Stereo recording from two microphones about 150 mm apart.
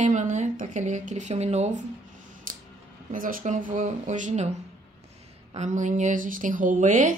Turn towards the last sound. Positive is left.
turn(degrees=-55)  # may be behind; listen again after turning